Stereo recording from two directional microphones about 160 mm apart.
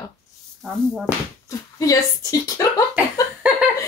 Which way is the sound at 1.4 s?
20° left (ahead or behind).